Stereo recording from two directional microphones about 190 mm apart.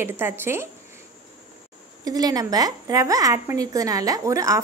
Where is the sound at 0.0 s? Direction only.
10° right (ahead or behind).